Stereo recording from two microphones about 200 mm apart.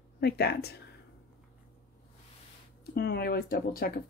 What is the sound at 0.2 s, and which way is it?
Speech, 55° left (ahead or behind).